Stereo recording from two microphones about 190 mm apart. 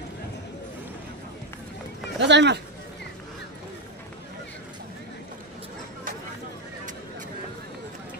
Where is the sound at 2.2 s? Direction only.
65° right (ahead or behind).